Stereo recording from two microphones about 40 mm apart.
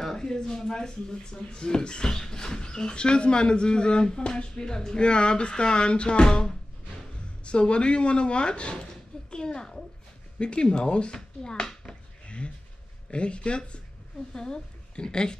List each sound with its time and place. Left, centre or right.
0.0 s speech: centre
10.4 s a woman's voice: left